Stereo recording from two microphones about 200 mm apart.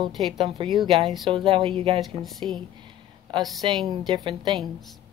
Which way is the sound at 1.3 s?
25° right (ahead or behind).